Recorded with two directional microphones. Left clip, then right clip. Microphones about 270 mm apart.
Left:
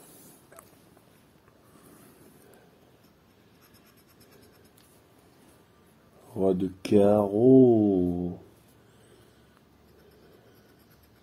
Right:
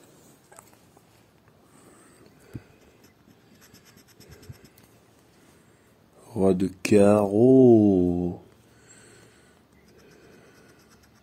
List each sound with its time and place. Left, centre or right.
6.5 s music: right